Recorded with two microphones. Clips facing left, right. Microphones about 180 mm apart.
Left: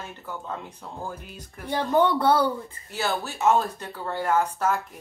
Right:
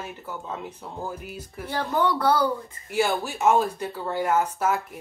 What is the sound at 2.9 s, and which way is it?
Speech, 10° right (ahead or behind).